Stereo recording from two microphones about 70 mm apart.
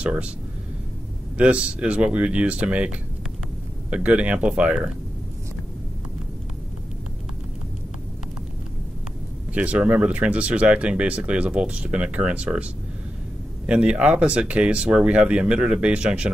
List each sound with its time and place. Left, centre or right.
0.0 s speech: centre
1.4 s speech: centre
9.5 s speech: centre
13.7 s speech: centre